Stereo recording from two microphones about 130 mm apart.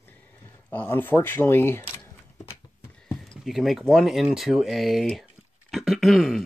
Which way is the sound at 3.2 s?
Centre (ahead or behind).